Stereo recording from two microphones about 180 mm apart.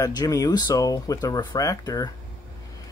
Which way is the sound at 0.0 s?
20° left (ahead or behind).